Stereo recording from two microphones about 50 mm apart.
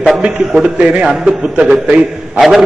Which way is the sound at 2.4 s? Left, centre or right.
Centre.